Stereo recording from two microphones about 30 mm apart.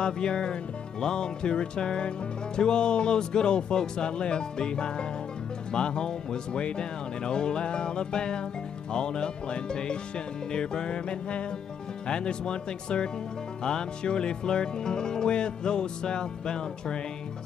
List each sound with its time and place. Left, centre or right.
0.0 s music: left
12.1 s speech: left
13.7 s music: left